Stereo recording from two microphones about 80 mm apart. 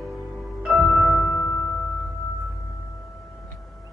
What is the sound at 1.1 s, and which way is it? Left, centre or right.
Music, centre.